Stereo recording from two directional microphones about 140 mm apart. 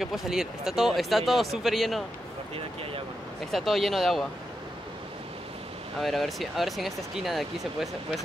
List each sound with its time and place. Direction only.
0.0 s speech: 5° right (ahead or behind)
2.5 s speech: 40° right (ahead or behind)
3.5 s speech: centre (ahead or behind)
5.9 s speech: centre (ahead or behind)